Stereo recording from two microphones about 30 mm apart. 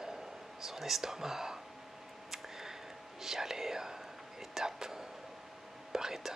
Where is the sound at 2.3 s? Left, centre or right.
Centre.